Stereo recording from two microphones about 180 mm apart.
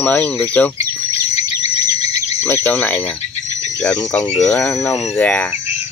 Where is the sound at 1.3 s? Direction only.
35° left (ahead or behind).